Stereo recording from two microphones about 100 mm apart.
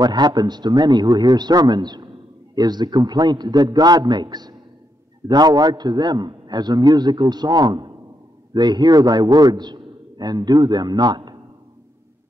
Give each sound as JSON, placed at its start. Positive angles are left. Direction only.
{"t": 0.0, "sound": "a man's voice", "side_deg": -45}